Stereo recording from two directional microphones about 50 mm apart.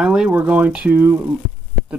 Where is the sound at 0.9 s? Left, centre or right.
Right.